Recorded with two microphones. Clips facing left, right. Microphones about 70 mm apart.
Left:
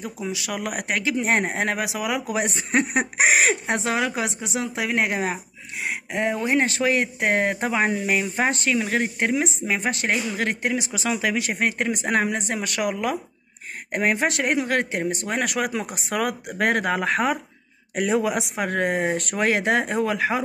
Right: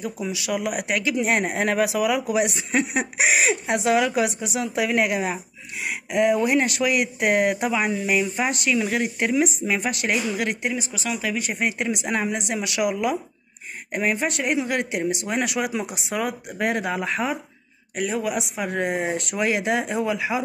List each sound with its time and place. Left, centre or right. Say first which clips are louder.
0.0 s a woman's voice: right 1 dB; left
3.6 s a woman's voice: right 3 dB; left
11.1 s speech: left 2 dB; left
11.5 s speech: left 1 dB; left
13.9 s speech: left 2 dB; left
16.2 s speech: left 2 dB; left
18.2 s speech: left 2 dB; centre
18.6 s speech: left 3 dB; left